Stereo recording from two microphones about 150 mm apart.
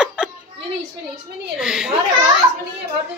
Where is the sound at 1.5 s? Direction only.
5° right (ahead or behind).